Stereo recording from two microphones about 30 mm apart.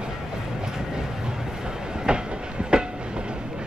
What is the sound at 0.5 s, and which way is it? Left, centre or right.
Train, centre.